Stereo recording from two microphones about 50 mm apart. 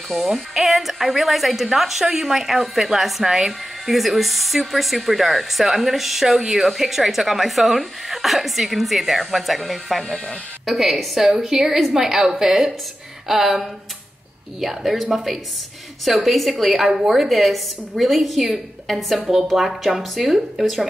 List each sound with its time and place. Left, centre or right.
0.1 s a woman's voice: centre